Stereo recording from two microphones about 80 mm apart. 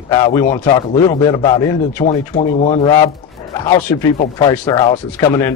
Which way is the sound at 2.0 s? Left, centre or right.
Left.